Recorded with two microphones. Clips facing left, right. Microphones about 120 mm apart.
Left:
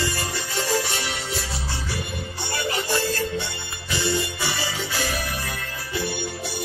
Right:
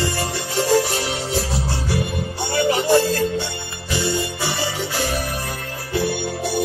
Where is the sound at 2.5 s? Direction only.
70° right (ahead or behind).